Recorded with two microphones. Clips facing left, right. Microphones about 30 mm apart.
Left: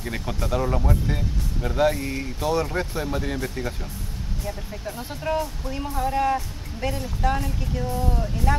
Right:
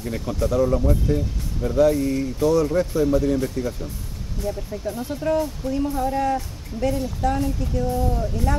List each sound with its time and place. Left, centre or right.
0.0 s speech: left
4.5 s speech: centre